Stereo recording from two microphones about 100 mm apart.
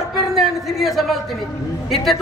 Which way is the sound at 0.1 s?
Centre (ahead or behind).